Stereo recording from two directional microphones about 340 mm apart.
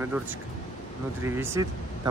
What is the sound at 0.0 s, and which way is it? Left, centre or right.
Speech, centre.